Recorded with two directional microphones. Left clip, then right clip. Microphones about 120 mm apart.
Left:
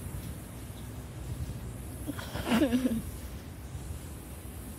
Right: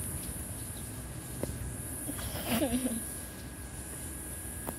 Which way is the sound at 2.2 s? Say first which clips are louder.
Left 4 dB; 20° left (ahead or behind).